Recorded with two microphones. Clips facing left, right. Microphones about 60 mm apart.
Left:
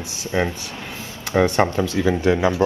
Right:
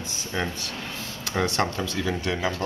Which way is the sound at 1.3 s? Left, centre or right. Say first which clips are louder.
Left 8 dB; centre.